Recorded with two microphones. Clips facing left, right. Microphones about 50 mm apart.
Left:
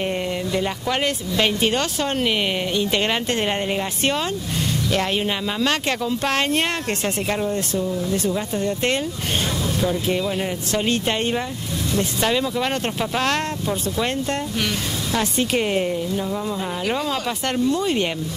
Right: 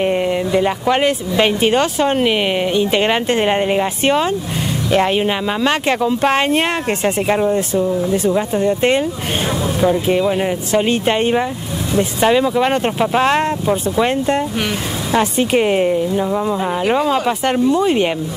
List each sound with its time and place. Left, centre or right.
0.0 s speech: centre